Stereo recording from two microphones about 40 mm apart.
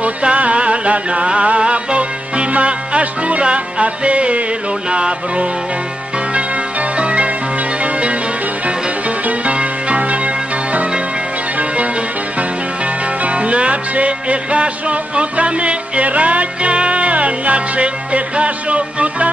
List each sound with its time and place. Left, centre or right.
0.0 s music: right
9.2 s music: right
13.2 s music: right